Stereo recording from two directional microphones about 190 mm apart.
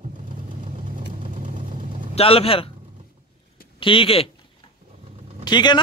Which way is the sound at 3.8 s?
25° left (ahead or behind).